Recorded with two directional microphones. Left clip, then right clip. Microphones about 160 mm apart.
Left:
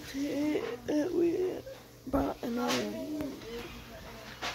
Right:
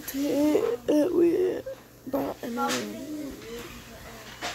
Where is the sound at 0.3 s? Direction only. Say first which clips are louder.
Right 10 dB; 15° right (ahead or behind).